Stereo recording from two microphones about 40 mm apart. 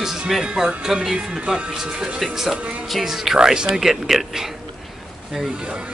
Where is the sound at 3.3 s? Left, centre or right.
Centre.